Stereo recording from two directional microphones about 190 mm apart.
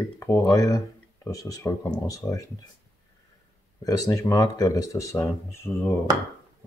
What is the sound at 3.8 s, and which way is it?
Speech, 20° left (ahead or behind).